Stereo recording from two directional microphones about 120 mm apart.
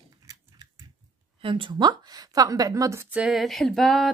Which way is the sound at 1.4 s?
45° right (ahead or behind).